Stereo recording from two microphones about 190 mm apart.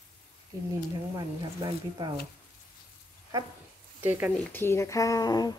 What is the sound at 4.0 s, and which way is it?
Speech, 10° right (ahead or behind).